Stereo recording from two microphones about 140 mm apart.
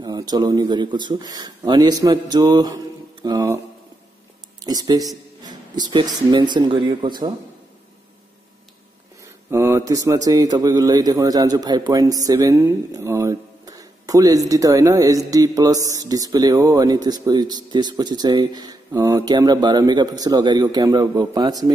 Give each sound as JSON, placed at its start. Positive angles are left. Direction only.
{"t": 0.0, "sound": "a man's voice", "side_deg": -30}
{"t": 4.6, "sound": "speech", "side_deg": -30}
{"t": 9.5, "sound": "a man's voice", "side_deg": -20}